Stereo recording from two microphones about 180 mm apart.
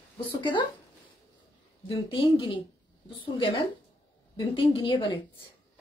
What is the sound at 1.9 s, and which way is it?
Speech, 30° left (ahead or behind).